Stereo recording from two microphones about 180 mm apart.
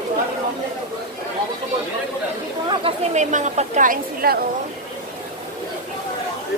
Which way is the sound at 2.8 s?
40° right (ahead or behind).